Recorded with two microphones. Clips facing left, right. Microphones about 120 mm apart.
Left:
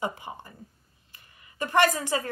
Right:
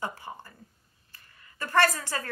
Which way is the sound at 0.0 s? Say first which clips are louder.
Left 3 dB; 15° left (ahead or behind).